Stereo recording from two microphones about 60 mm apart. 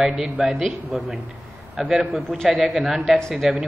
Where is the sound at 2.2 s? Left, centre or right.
Centre.